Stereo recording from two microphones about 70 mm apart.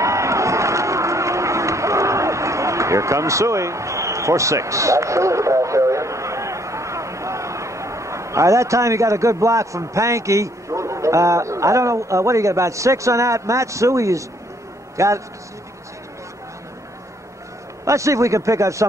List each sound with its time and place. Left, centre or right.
0.0 s crowd: right
15.0 s speech: right
17.8 s speech: right